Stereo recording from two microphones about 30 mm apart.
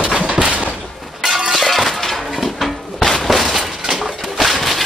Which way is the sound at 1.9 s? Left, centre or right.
Centre.